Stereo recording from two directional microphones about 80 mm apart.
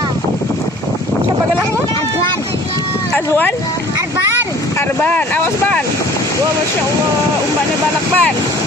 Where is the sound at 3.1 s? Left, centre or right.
Left.